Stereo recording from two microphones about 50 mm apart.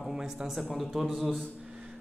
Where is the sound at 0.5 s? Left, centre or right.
Centre.